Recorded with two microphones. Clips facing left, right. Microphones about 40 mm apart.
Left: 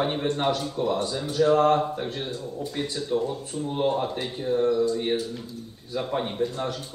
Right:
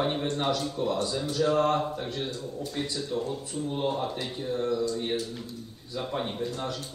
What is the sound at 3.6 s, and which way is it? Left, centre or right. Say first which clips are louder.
Speech: left 4 dB; centre.